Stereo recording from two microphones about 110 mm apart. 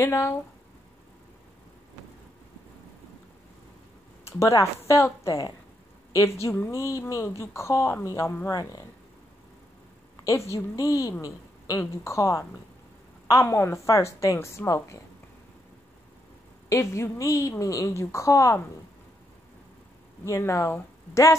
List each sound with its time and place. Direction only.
0.0 s a woman's voice: 25° left (ahead or behind)
4.3 s a woman's voice: 30° left (ahead or behind)
10.2 s a woman's voice: 25° left (ahead or behind)
16.6 s a woman's voice: 25° left (ahead or behind)
20.2 s a woman's voice: 25° left (ahead or behind)